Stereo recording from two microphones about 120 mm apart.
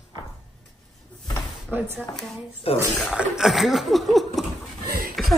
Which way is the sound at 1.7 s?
15° right (ahead or behind).